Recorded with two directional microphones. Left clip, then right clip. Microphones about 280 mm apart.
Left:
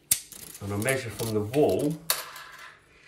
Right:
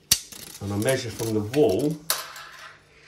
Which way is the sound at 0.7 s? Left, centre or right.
Centre.